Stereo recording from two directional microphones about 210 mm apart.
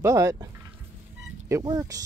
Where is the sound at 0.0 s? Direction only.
15° right (ahead or behind).